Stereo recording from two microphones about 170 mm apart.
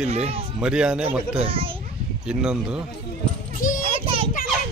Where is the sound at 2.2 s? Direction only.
5° right (ahead or behind).